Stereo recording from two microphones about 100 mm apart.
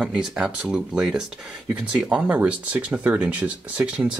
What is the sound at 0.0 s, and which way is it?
Speech, 5° right (ahead or behind).